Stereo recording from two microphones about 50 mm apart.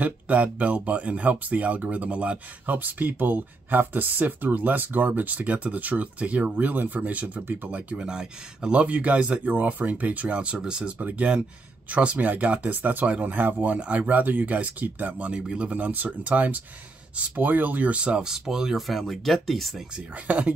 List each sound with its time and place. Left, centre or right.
0.0 s speech: right
7.7 s speech: right
8.7 s speech: right
11.0 s speech: right; by 18.9 s centre
18.9 s speech: centre
20.2 s speech: right